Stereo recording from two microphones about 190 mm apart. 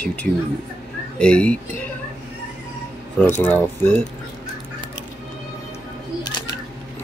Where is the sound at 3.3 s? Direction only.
10° left (ahead or behind).